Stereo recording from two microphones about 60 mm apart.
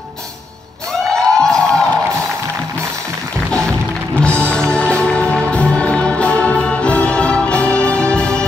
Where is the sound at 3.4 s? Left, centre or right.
Centre.